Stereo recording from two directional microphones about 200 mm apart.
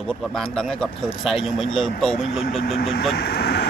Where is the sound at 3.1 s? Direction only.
55° left (ahead or behind).